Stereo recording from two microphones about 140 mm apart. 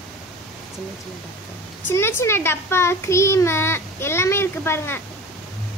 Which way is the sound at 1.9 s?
15° left (ahead or behind).